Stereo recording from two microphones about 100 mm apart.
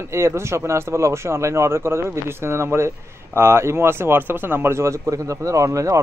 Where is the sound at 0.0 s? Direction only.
25° right (ahead or behind).